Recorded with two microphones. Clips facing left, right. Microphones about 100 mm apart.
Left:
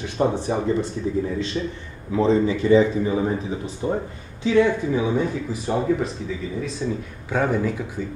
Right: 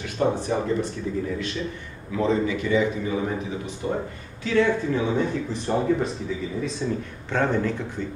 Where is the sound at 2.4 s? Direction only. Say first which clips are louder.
Left 6 dB; 30° left (ahead or behind).